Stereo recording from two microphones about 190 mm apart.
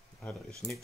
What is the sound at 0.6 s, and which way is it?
Speech, 20° left (ahead or behind).